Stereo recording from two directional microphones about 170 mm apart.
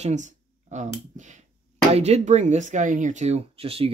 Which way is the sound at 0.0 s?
45° right (ahead or behind).